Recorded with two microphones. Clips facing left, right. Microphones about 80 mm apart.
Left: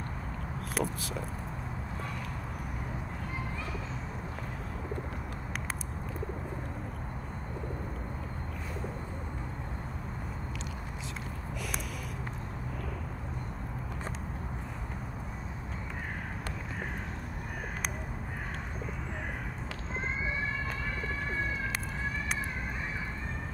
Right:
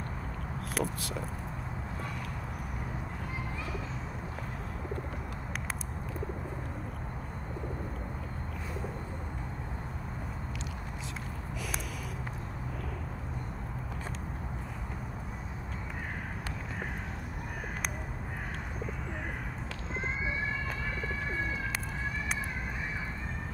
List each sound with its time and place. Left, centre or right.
0.7 s speech: centre